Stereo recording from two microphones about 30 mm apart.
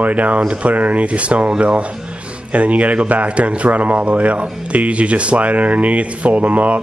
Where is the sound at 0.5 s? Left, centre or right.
Right.